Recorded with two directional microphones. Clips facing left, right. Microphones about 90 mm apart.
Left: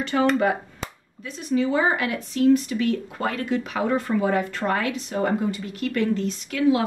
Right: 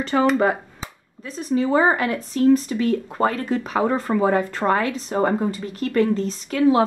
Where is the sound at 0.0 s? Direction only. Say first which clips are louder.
Right 2 dB; 35° right (ahead or behind).